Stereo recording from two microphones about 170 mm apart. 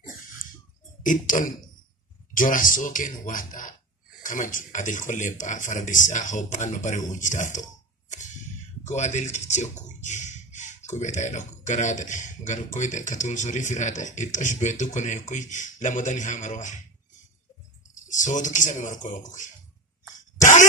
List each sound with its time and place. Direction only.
1.0 s speech: 50° left (ahead or behind)
8.8 s speech: 45° left (ahead or behind)
18.0 s speech: 50° left (ahead or behind)